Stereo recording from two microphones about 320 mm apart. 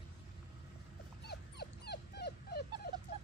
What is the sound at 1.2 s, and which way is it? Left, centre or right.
Dog, left.